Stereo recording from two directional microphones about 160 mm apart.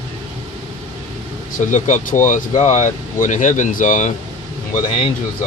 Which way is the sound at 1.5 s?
50° left (ahead or behind).